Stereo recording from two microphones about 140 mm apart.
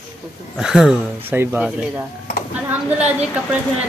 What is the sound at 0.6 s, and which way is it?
Speech, 5° right (ahead or behind).